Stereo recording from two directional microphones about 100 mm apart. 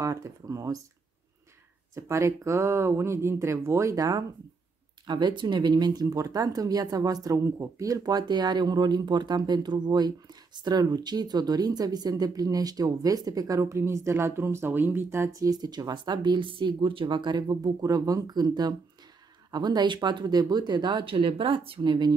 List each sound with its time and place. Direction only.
0.0 s speech: 35° right (ahead or behind)
2.0 s speech: 30° right (ahead or behind)
5.0 s speech: 50° right (ahead or behind); by 15.3 s 25° right (ahead or behind)
15.4 s speech: 40° right (ahead or behind)